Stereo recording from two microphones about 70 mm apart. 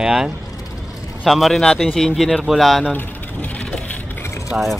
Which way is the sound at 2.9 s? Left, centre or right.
Left.